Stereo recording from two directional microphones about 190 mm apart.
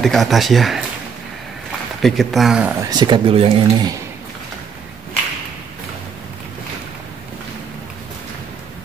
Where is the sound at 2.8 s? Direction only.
20° right (ahead or behind).